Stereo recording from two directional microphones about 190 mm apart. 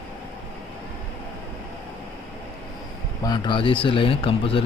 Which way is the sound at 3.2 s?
20° left (ahead or behind).